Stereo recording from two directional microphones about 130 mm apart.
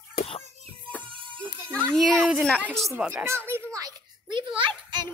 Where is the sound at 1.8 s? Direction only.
5° left (ahead or behind).